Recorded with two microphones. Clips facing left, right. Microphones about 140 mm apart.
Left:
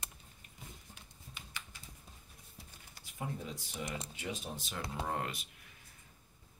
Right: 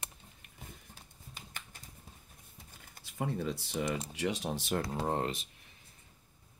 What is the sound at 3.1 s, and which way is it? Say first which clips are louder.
Speech: right 7 dB; 80° right.